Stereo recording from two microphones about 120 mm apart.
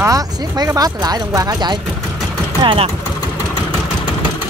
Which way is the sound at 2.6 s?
45° right (ahead or behind).